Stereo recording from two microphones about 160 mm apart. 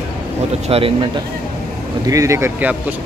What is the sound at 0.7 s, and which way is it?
Speech, 40° right (ahead or behind).